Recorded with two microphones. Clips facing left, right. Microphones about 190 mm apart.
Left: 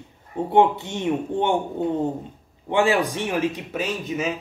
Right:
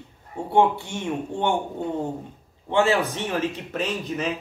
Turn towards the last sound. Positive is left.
turn(degrees=5)  # may be behind; listen again after turning